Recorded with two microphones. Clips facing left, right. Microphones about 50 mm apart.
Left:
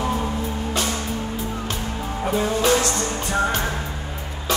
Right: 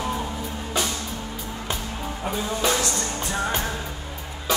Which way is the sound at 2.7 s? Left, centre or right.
Left.